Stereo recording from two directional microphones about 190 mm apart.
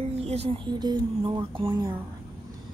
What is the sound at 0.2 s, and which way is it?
Speech, 30° right (ahead or behind).